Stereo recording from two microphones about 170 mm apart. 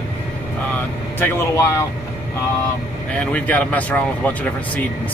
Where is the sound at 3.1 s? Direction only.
10° left (ahead or behind).